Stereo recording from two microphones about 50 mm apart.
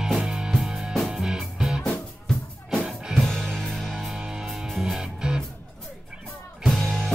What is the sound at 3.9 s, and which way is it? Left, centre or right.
Music, centre.